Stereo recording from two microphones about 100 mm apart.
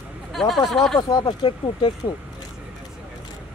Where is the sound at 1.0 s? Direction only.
50° left (ahead or behind).